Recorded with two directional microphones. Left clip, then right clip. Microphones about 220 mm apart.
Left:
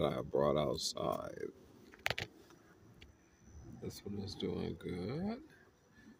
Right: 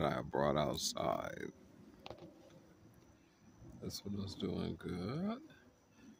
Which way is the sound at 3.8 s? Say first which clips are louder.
Even; 50° right (ahead or behind).